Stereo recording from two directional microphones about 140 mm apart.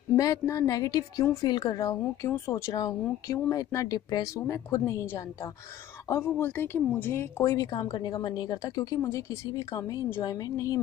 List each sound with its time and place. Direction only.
0.1 s speech: 20° left (ahead or behind)